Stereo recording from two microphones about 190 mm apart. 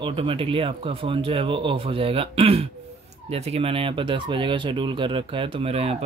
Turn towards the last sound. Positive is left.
turn(degrees=-30)  # may be behind; listen again after turning